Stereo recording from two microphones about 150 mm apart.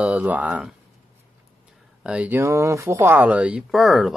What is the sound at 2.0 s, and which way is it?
Speech, 5° right (ahead or behind).